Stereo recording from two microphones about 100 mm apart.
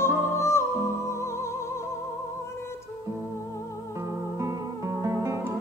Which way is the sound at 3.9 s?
30° right (ahead or behind).